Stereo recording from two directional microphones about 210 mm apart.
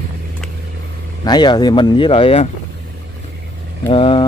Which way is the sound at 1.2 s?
20° left (ahead or behind).